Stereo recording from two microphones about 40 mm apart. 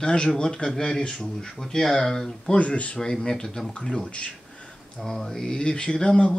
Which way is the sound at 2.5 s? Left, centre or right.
Left.